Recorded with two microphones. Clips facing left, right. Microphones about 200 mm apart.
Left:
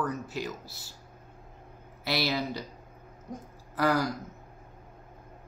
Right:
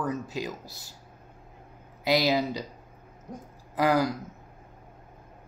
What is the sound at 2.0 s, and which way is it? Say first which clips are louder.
Speech: right 6 dB; 15° right (ahead or behind).